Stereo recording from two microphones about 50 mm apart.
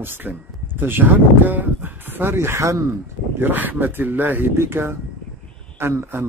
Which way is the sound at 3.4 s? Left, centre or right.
Right.